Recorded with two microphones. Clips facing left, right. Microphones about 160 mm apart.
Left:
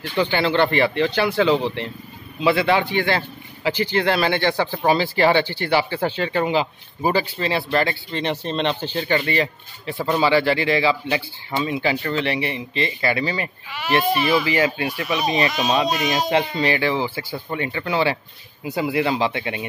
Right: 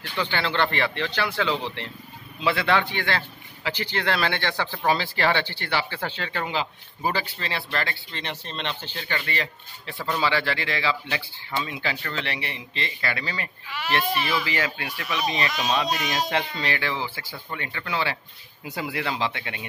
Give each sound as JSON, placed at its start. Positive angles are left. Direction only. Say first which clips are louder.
{"t": 0.2, "sound": "speech", "louder": "left 6 dB", "side_deg": 15}